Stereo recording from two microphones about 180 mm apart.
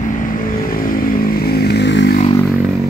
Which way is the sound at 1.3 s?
60° left (ahead or behind).